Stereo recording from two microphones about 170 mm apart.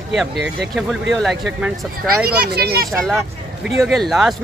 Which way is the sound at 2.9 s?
Centre (ahead or behind).